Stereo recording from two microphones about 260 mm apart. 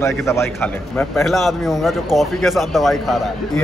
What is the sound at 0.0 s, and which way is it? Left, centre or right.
Speech, centre.